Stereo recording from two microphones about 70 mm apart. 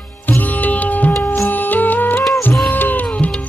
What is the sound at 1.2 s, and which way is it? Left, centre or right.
Music, left.